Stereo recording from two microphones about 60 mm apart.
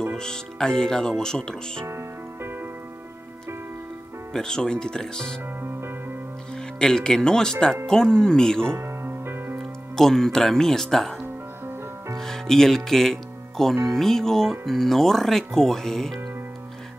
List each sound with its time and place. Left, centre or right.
0.1 s speech: centre
1.9 s music: right
4.3 s speech: centre
5.6 s music: right
6.5 s speech: centre
8.7 s music: right
9.9 s speech: centre
12.2 s music: centre
13.8 s speech: centre